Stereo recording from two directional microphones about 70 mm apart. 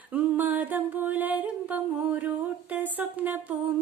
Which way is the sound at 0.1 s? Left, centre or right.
Right.